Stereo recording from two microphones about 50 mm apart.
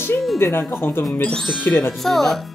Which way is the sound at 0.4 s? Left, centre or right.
Left.